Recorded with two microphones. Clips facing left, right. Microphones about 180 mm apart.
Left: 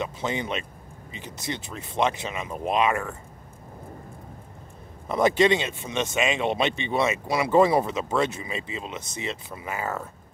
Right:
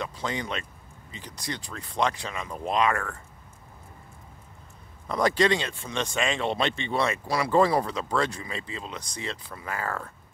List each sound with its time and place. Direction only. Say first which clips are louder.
0.0 s speech: left 3 dB; 20° left (ahead or behind)
5.0 s speech: left 3 dB; 25° left (ahead or behind)